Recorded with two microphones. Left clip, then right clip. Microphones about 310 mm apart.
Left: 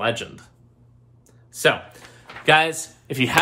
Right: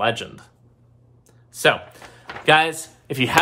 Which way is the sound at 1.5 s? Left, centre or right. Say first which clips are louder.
Right 1 dB; centre.